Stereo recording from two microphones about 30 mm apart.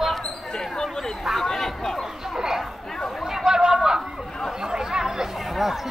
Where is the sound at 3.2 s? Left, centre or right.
Centre.